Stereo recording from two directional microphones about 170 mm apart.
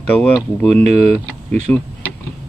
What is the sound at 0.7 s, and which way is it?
Speech, 40° right (ahead or behind).